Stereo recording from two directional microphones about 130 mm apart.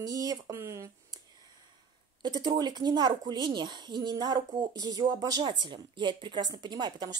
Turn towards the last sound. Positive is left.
turn(degrees=-30)  # may be behind; listen again after turning